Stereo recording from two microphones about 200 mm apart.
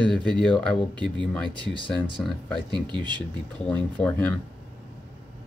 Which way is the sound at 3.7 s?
10° left (ahead or behind).